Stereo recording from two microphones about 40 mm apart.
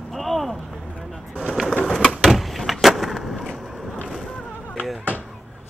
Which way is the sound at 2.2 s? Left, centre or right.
Centre.